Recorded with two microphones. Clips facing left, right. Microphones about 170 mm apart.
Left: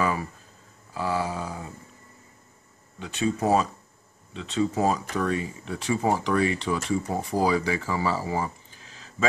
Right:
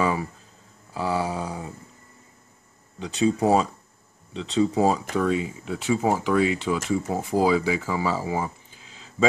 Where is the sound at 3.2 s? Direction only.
10° right (ahead or behind).